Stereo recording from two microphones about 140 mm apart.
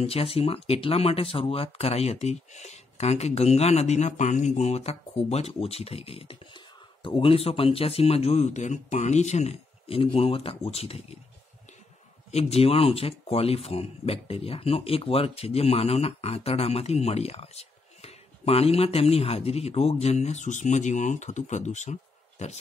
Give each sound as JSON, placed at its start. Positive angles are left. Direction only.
{"t": 0.0, "sound": "speech", "side_deg": 45}
{"t": 12.3, "sound": "speech", "side_deg": 50}